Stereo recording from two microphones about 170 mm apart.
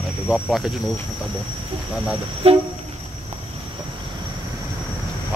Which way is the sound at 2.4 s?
35° right (ahead or behind).